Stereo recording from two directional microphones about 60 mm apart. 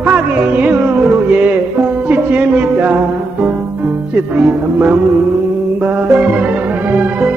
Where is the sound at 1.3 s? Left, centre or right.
Right.